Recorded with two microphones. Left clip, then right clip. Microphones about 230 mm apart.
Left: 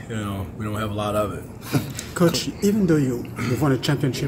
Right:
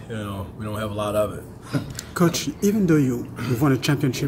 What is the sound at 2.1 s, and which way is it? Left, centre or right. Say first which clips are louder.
Speech: left 1 dB; right.